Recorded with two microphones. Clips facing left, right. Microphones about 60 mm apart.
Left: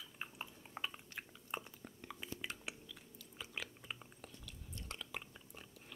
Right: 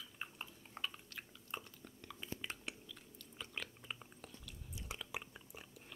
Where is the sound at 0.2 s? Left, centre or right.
Centre.